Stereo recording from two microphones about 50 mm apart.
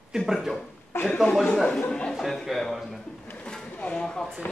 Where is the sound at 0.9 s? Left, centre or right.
Left.